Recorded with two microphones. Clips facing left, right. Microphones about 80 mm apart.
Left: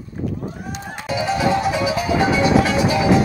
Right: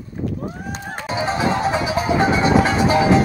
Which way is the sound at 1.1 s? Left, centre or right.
Right.